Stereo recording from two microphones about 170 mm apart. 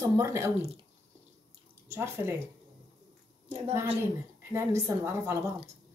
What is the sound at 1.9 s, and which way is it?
Speech, 15° right (ahead or behind).